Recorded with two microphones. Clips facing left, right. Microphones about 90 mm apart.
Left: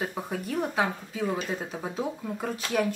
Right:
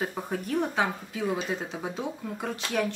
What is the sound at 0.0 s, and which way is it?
Speech, centre (ahead or behind).